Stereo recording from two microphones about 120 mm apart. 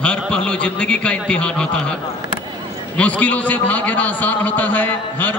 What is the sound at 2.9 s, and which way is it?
A man's voice, 10° left (ahead or behind).